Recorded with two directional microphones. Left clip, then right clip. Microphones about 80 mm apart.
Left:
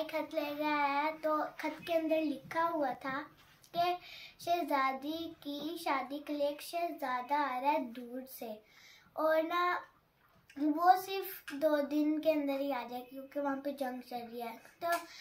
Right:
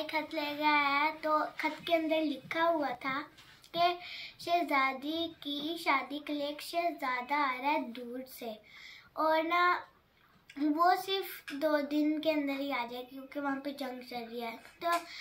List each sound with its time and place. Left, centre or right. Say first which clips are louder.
0.0 s child singing: right 1 dB; left